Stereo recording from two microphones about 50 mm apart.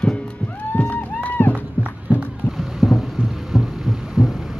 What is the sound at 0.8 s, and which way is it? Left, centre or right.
Run, left.